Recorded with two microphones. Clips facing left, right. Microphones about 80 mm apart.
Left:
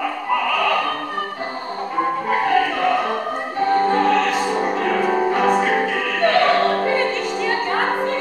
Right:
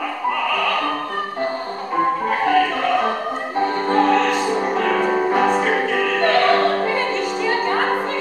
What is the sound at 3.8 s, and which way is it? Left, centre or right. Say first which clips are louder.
Music: right 1 dB; centre.